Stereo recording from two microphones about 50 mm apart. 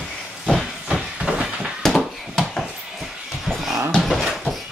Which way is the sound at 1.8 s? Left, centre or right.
Centre.